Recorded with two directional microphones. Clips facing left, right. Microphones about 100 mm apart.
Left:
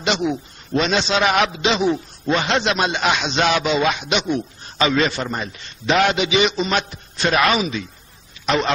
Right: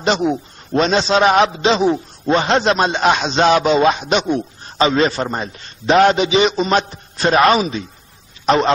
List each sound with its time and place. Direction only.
0.0 s a man's voice: 40° right (ahead or behind)